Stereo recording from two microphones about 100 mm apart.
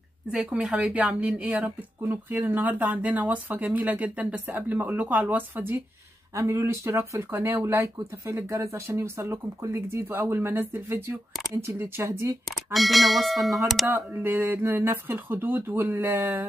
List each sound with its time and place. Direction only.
0.3 s speech: 5° right (ahead or behind)
6.3 s speech: 30° right (ahead or behind)
12.7 s speech: centre (ahead or behind)
13.8 s speech: 20° right (ahead or behind)